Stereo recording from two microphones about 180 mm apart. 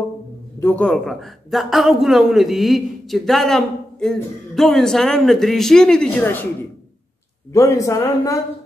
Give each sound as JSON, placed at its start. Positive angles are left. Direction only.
{"t": 0.6, "sound": "a man's voice", "side_deg": 10}
{"t": 7.5, "sound": "speech", "side_deg": 15}